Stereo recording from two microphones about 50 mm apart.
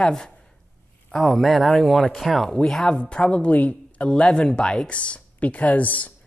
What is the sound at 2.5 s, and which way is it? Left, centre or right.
Speech, centre.